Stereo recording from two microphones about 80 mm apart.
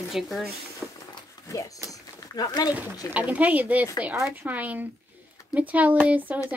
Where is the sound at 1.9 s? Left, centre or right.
Left.